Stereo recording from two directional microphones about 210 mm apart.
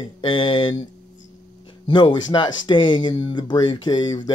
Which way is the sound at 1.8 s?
20° left (ahead or behind).